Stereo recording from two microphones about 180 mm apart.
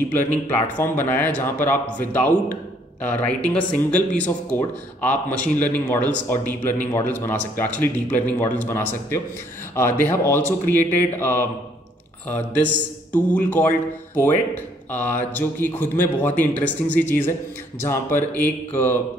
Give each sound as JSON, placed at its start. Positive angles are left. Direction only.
{"t": 0.1, "sound": "speech", "side_deg": 10}